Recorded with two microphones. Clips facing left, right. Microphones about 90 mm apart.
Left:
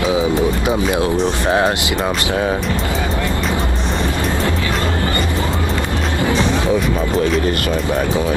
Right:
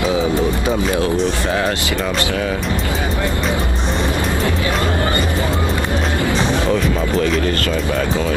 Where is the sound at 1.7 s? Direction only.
20° left (ahead or behind).